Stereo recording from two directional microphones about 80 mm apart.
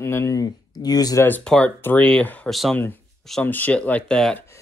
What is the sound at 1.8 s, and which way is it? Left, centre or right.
Speech, left.